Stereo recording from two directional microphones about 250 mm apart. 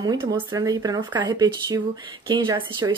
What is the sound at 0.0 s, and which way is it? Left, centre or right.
Speech, centre.